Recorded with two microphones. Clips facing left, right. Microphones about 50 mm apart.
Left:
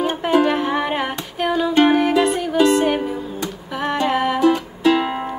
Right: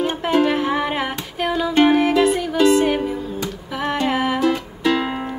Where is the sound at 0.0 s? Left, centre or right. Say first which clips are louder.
Left 1 dB; centre.